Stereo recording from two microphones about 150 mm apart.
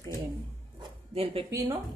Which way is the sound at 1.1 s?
40° right (ahead or behind).